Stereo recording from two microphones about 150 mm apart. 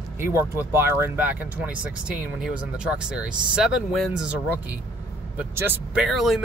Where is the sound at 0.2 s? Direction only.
15° right (ahead or behind).